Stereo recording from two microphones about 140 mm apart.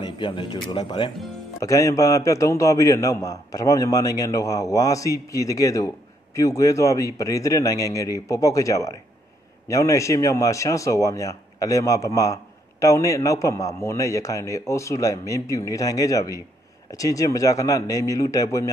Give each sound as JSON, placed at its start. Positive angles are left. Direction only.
{"t": 0.0, "sound": "speech", "side_deg": 35}
{"t": 1.6, "sound": "a man's voice", "side_deg": 25}